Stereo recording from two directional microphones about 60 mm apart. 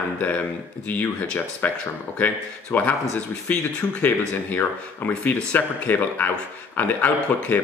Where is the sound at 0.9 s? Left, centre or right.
Left.